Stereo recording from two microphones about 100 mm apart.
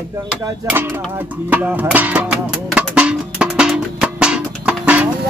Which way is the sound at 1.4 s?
15° right (ahead or behind).